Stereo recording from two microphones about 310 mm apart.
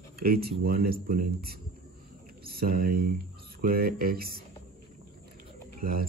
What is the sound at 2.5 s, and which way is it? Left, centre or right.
A man's voice, right.